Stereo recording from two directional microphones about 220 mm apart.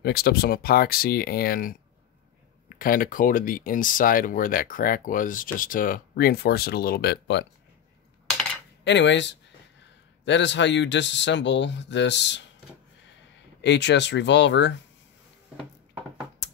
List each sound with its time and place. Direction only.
0.0 s speech: 45° left (ahead or behind)
8.8 s speech: 55° left (ahead or behind)
13.6 s speech: 50° left (ahead or behind)